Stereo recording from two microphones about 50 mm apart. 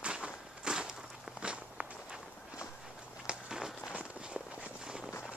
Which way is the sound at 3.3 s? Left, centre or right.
Centre.